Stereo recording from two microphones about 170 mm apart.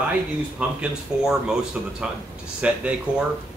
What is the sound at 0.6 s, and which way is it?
Speech, 5° right (ahead or behind).